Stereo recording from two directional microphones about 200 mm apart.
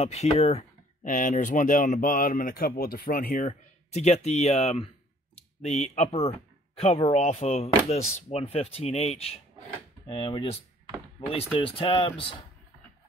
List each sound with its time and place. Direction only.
0.0 s speech: 30° left (ahead or behind)
3.4 s speech: 35° left (ahead or behind)